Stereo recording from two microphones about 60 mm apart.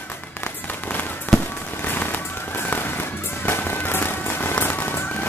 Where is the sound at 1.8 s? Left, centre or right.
Left.